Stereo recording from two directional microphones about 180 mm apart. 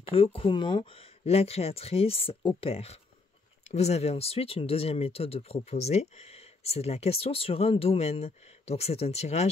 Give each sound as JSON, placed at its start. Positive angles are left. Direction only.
{"t": 0.1, "sound": "speech", "side_deg": 30}